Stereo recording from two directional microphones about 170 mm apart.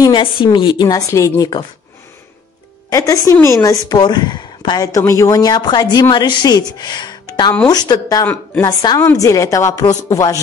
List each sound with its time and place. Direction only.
0.0 s a woman's voice: 30° left (ahead or behind)
2.9 s a woman's voice: 20° left (ahead or behind)